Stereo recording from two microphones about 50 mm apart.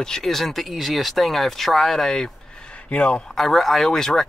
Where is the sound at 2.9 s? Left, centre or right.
Left.